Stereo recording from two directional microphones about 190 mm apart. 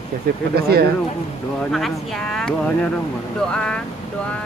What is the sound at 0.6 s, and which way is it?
Speech, 55° right (ahead or behind).